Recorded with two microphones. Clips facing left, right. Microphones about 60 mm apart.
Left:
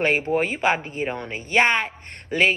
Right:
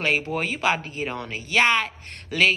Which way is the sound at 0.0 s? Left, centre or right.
Left.